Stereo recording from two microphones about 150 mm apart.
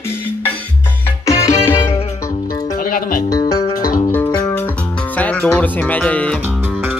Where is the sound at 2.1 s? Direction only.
25° left (ahead or behind).